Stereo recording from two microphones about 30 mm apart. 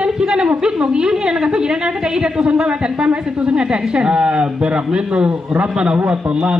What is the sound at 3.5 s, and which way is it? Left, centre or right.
A man's voice, right.